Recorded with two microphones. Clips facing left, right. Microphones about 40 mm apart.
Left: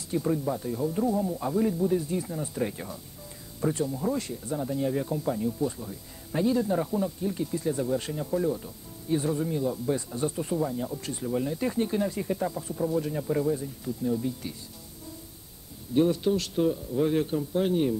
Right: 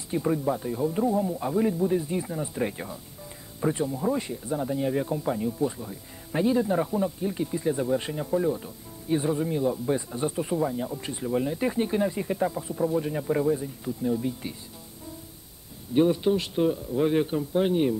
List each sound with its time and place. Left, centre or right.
0.1 s speech: right
15.9 s speech: right